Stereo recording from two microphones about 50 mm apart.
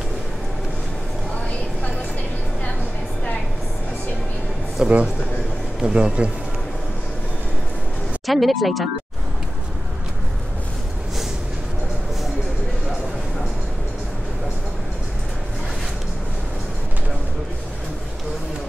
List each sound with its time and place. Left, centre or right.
4.8 s a man's voice: centre
8.3 s speech: centre